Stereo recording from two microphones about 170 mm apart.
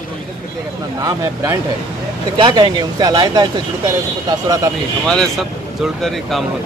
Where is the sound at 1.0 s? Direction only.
20° right (ahead or behind).